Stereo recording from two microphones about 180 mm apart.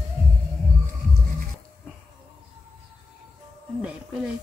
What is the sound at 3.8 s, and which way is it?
Speech, 5° right (ahead or behind).